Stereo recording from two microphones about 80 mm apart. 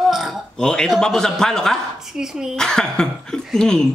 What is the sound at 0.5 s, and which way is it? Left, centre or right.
Speech, centre.